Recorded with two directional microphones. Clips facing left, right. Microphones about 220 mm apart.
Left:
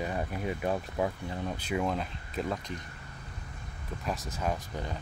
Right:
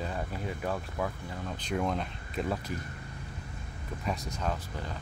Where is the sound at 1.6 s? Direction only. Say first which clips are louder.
Right 1 dB; 5° left (ahead or behind).